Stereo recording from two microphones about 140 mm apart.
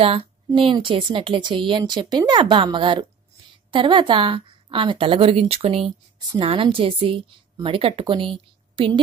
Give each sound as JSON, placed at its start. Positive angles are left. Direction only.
{"t": 0.0, "sound": "speech", "side_deg": -45}